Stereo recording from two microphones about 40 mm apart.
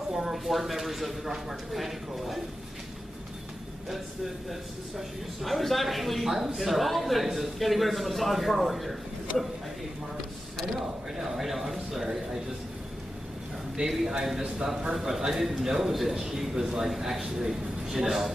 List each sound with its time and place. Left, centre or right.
0.1 s a man's voice: centre
4.5 s a man's voice: centre
10.6 s a man's voice: centre
13.8 s a man's voice: centre